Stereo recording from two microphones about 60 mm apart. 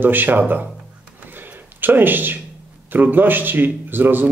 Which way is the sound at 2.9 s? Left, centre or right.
Right.